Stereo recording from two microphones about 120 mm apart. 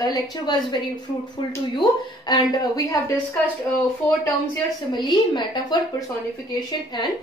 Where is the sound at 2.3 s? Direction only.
30° left (ahead or behind).